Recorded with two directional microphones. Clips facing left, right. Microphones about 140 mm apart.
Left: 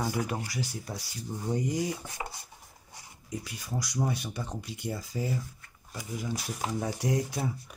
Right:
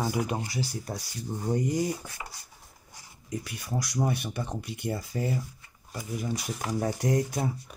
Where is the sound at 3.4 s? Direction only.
60° right (ahead or behind).